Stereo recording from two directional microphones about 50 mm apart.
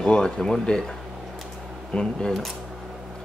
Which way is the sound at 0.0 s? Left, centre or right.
Centre.